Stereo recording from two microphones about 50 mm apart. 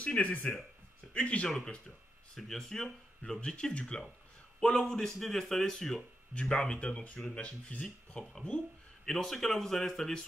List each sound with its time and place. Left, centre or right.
0.0 s speech: left
2.3 s speech: centre
8.5 s a sound: centre
9.1 s speech: centre